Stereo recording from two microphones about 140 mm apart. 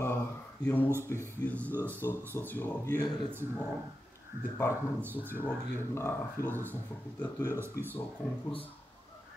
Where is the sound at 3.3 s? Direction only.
15° right (ahead or behind).